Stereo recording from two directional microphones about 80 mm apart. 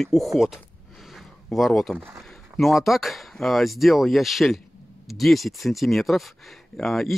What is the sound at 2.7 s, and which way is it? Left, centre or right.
Speech, centre.